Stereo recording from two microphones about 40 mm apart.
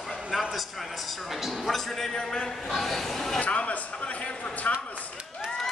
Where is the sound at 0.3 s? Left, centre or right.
Centre.